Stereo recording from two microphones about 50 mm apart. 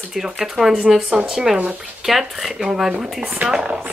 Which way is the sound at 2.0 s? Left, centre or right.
Centre.